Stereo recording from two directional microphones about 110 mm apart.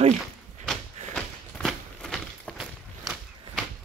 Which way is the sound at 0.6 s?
Centre (ahead or behind).